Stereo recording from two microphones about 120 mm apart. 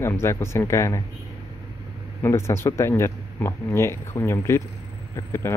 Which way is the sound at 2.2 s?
20° left (ahead or behind).